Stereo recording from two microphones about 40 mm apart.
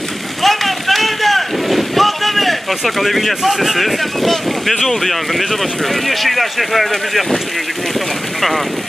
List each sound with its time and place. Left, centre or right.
0.4 s boat: centre
6.0 s speech: centre